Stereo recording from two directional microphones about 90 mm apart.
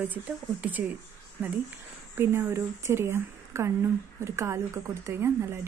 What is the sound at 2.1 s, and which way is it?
Speech, 30° right (ahead or behind).